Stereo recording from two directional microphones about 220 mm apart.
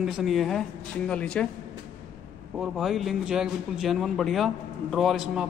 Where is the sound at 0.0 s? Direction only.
Centre (ahead or behind).